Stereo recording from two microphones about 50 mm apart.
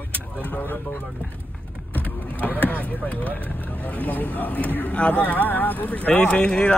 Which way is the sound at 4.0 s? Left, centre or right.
Left.